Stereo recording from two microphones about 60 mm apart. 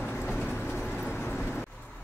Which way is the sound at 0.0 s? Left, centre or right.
Left.